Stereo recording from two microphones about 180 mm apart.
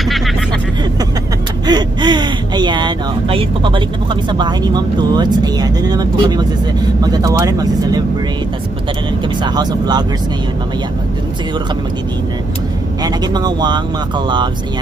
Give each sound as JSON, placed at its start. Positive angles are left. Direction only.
{"t": 1.7, "sound": "speech", "side_deg": -25}
{"t": 9.4, "sound": "speech", "side_deg": -25}
{"t": 13.0, "sound": "speech", "side_deg": -25}